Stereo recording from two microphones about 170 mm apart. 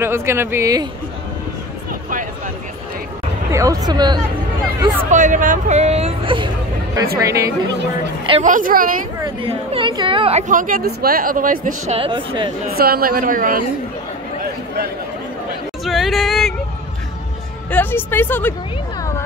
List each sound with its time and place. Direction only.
0.0 s speech: 15° right (ahead or behind)
3.5 s speech: 20° right (ahead or behind)
5.1 s speech: 50° right (ahead or behind); by 6.5 s 30° right (ahead or behind)
7.2 s speech: 20° right (ahead or behind)
8.5 s speech: 55° right (ahead or behind)
9.2 s speech: 35° right (ahead or behind)
10.5 s speech: 55° right (ahead or behind)
12.0 s speech: 35° right (ahead or behind)
12.7 s speech: 65° right (ahead or behind)
15.8 s yodeling: centre (ahead or behind)
17.6 s speech: 10° left (ahead or behind)